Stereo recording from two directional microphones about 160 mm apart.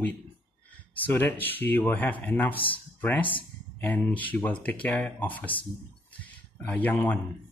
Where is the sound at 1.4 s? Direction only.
10° left (ahead or behind).